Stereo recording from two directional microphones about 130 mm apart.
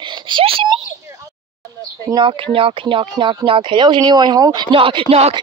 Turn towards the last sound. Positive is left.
turn(degrees=-50)  # may be behind; listen again after turning